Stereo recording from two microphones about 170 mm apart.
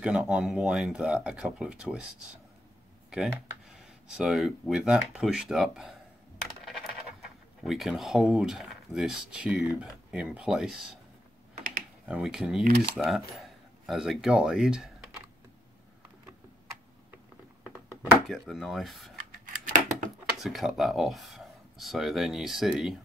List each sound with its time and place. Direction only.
0.0 s speech: 5° right (ahead or behind)
3.1 s speech: centre (ahead or behind)
12.1 s speech: 5° right (ahead or behind)
12.6 s speech: 55° right (ahead or behind)
12.9 s speech: centre (ahead or behind)
18.3 s speech: centre (ahead or behind)
19.4 s scissors: 50° right (ahead or behind)
20.4 s speech: centre (ahead or behind)